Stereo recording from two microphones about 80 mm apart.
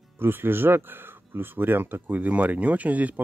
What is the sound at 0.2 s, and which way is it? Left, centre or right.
Speech, right.